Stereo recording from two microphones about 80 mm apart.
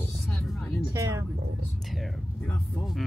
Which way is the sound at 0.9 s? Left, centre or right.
Right.